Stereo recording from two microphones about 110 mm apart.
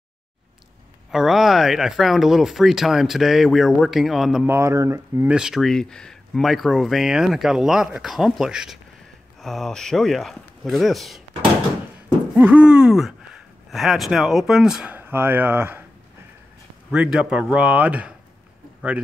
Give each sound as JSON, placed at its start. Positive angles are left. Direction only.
{"t": 1.1, "sound": "speech", "side_deg": 0}
{"t": 4.5, "sound": "speech", "side_deg": -25}
{"t": 5.3, "sound": "speech", "side_deg": -5}
{"t": 12.4, "sound": "speech", "side_deg": -15}
{"t": 15.0, "sound": "speech", "side_deg": -20}
{"t": 16.9, "sound": "speech", "side_deg": -10}